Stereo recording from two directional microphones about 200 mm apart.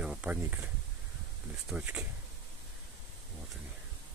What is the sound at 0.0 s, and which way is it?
Speech, 5° right (ahead or behind).